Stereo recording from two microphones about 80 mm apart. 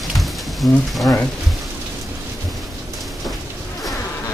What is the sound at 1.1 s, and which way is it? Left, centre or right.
Speech, left.